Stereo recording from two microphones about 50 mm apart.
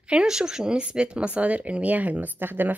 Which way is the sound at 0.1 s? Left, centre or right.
Centre.